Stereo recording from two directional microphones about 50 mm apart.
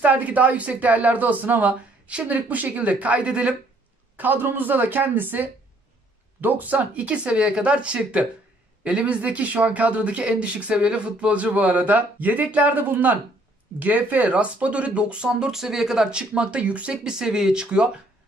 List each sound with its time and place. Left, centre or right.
0.0 s speech: right
4.2 s speech: right; by 17.8 s centre